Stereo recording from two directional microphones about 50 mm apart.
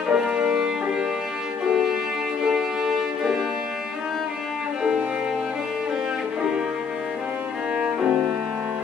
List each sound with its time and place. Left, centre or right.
0.1 s music: centre
2.4 s music: centre